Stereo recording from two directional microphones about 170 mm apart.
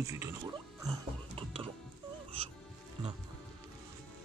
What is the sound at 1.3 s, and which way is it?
Music, 35° right (ahead or behind).